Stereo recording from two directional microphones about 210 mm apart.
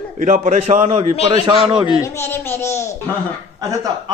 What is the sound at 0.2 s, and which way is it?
Speech, 35° right (ahead or behind).